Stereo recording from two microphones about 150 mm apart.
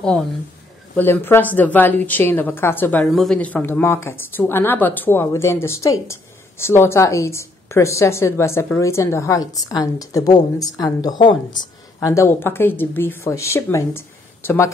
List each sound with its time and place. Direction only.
0.9 s a woman's voice: 15° left (ahead or behind)